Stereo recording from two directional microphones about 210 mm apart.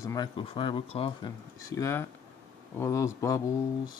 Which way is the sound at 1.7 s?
15° left (ahead or behind).